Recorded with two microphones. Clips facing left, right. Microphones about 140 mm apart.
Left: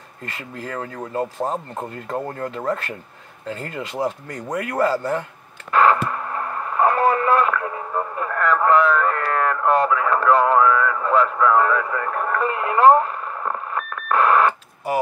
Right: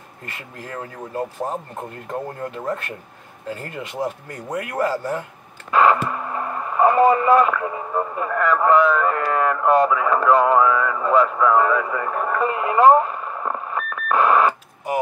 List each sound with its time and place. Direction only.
0.2 s speech: 15° right (ahead or behind)
1.1 s speech: 20° left (ahead or behind)
2.5 s speech: 15° right (ahead or behind)
5.7 s radio: 5° right (ahead or behind)